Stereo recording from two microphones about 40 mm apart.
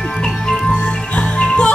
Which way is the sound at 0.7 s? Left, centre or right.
Left.